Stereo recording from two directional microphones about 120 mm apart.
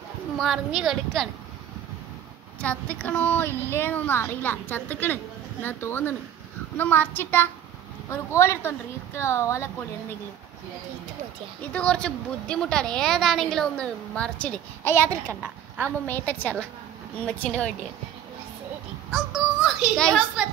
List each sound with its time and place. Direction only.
0.4 s a woman's voice: centre (ahead or behind)
2.6 s a woman's voice: 10° left (ahead or behind)
11.7 s a woman's voice: 10° left (ahead or behind)
16.1 s a woman's voice: 15° left (ahead or behind)
19.1 s music: 5° right (ahead or behind)
20.4 s a woman's voice: 5° right (ahead or behind)